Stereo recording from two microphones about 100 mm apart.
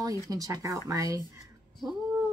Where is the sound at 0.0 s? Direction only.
35° right (ahead or behind).